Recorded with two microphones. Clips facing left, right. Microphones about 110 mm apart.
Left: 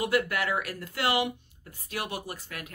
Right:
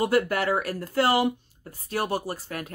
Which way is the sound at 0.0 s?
35° right (ahead or behind).